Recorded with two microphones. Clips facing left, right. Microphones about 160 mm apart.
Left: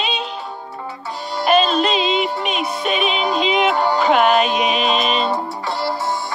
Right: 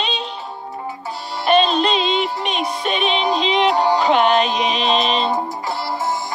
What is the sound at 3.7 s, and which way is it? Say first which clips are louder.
Music: right 1 dB; 35° right (ahead or behind).